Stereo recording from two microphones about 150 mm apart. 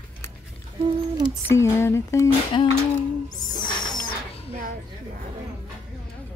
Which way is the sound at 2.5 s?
30° left (ahead or behind).